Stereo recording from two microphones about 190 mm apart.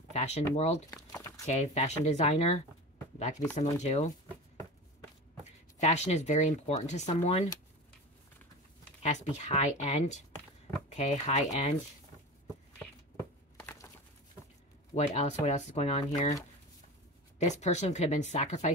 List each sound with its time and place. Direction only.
0.1 s speech: 35° left (ahead or behind)
0.8 s crumpling: 15° left (ahead or behind)
1.4 s speech: 35° left (ahead or behind)
5.8 s speech: 35° left (ahead or behind)
9.0 s speech: 40° left (ahead or behind)
13.6 s a sound: 15° left (ahead or behind)
15.0 s speech: 35° left (ahead or behind)
17.4 s speech: 35° left (ahead or behind)